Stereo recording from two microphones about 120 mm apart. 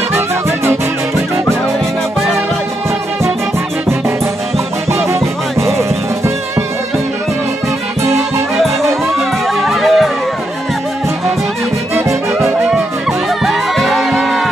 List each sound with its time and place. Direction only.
5.2 s music: 25° right (ahead or behind)
9.6 s music: centre (ahead or behind)
12.4 s music: centre (ahead or behind)